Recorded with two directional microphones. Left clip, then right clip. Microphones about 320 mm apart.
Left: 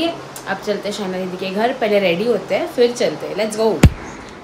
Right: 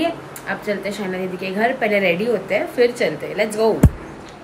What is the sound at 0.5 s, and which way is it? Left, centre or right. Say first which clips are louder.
A woman's voice: left 2 dB; centre.